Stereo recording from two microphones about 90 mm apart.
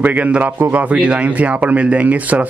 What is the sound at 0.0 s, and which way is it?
Speech, 15° right (ahead or behind).